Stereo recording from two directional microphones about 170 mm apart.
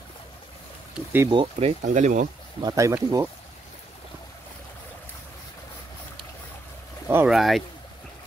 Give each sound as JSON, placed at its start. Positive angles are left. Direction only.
{"t": 0.9, "sound": "speech", "side_deg": -15}
{"t": 1.3, "sound": "speech", "side_deg": -35}
{"t": 2.6, "sound": "speech", "side_deg": -20}
{"t": 7.2, "sound": "speech", "side_deg": 0}